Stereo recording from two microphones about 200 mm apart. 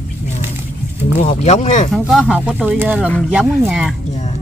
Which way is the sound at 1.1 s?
35° left (ahead or behind).